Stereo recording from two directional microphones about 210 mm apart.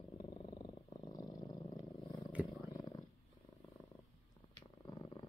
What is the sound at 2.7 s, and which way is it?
Wild animals, 20° left (ahead or behind).